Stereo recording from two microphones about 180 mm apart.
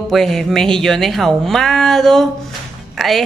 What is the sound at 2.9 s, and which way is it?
Speech, centre (ahead or behind).